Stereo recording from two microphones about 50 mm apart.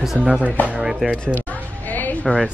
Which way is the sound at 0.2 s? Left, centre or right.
Left.